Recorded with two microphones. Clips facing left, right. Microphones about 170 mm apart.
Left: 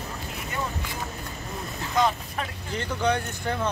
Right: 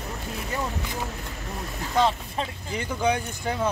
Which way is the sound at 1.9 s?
30° right (ahead or behind).